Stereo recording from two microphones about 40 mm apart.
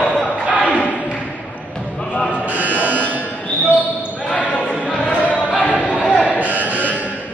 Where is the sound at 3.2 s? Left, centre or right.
Left.